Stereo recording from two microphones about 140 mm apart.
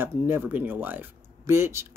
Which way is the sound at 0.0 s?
15° right (ahead or behind).